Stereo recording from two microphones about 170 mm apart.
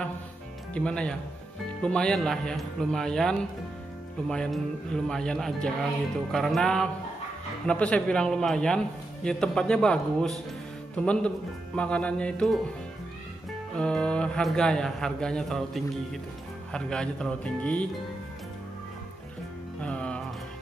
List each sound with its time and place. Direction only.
0.7 s a man's voice: 5° left (ahead or behind)
13.7 s a man's voice: 5° left (ahead or behind)
19.8 s music: 5° left (ahead or behind)